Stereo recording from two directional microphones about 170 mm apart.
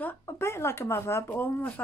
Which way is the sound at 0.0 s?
15° left (ahead or behind).